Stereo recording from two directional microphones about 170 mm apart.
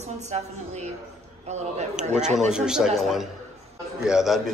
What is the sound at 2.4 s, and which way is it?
A man's voice, 5° right (ahead or behind).